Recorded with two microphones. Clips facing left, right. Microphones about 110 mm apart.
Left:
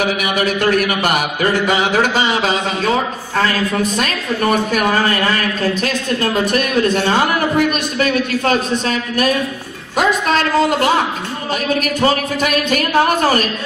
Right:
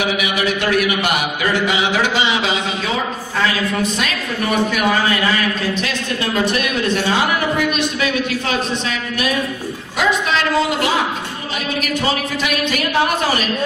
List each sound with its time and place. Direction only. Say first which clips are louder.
0.0 s speech: left 2 dB; 45° left (ahead or behind)
4.0 s speech: left 3 dB; 45° left (ahead or behind)
9.9 s a sound: left 3 dB; 45° left (ahead or behind)
11.8 s speech: left 1 dB; 45° left (ahead or behind)